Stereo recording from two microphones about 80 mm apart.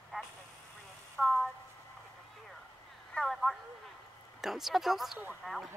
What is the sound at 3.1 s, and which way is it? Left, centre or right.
Speech, centre.